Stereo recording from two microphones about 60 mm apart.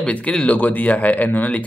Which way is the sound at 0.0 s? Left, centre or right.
Centre.